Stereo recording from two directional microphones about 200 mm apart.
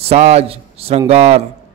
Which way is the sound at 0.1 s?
35° right (ahead or behind).